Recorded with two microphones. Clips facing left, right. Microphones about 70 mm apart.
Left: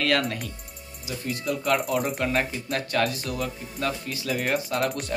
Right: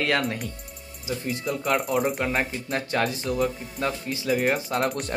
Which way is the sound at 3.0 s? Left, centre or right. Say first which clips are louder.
Right 3 dB; right.